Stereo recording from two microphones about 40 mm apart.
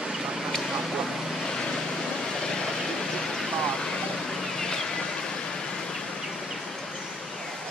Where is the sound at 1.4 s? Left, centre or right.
Centre.